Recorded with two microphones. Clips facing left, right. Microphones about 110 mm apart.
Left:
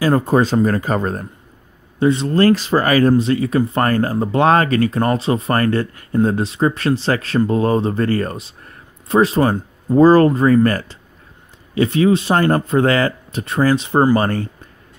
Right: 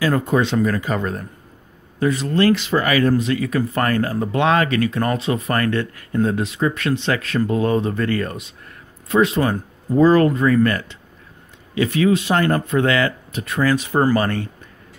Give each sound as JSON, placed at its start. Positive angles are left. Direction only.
{"t": 0.0, "sound": "speech", "side_deg": 30}
{"t": 2.0, "sound": "speech", "side_deg": 30}